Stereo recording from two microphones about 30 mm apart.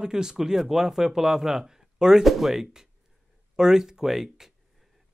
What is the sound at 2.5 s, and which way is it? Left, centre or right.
Speech, centre.